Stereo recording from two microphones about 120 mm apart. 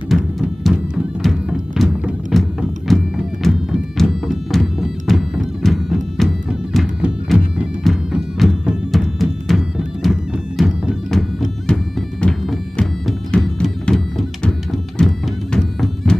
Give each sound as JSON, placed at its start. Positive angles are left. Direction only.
{"t": 0.1, "sound": "music", "side_deg": 0}
{"t": 3.4, "sound": "music", "side_deg": 0}
{"t": 15.5, "sound": "music", "side_deg": 5}